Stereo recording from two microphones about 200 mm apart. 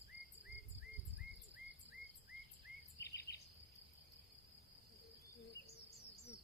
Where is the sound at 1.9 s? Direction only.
Centre (ahead or behind).